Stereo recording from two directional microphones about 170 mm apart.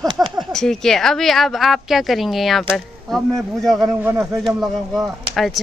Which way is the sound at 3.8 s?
15° right (ahead or behind).